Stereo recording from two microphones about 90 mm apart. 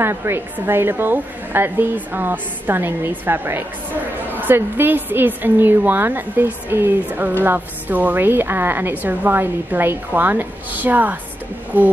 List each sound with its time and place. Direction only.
0.0 s a woman's voice: 25° right (ahead or behind)